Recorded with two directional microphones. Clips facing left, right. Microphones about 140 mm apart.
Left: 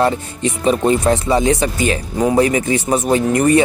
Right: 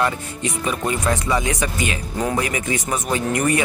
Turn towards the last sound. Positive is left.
turn(degrees=30)  # may be behind; listen again after turning